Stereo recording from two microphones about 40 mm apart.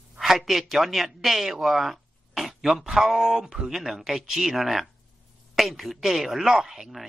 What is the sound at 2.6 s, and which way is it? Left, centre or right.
Speech, centre.